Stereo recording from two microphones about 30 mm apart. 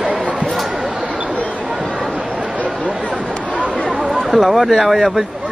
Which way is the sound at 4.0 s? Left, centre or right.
Centre.